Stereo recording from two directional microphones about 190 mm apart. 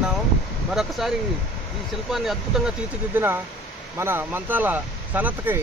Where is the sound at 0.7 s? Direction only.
Centre (ahead or behind).